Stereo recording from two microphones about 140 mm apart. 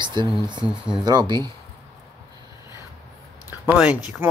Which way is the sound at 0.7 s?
5° right (ahead or behind).